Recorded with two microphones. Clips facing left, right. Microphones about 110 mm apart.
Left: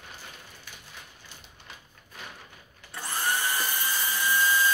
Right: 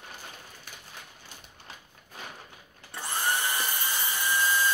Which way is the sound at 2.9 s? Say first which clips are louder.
Even; 20° right (ahead or behind).